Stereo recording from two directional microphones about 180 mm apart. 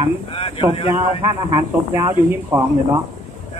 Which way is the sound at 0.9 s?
20° right (ahead or behind).